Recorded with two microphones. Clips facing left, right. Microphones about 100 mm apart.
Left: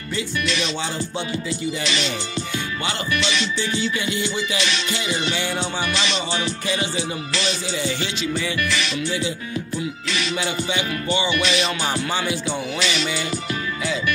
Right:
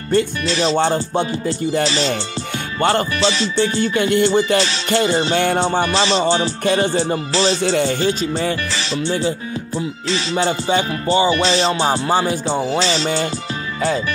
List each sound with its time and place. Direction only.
0.5 s music: 35° right (ahead or behind)
3.2 s music: 35° right (ahead or behind)
3.6 s music: 50° right (ahead or behind)
4.6 s music: 35° right (ahead or behind)
5.3 s music: 55° right (ahead or behind)
5.6 s music: 40° right (ahead or behind)
6.6 s music: 50° right (ahead or behind)
7.0 s music: 35° right (ahead or behind)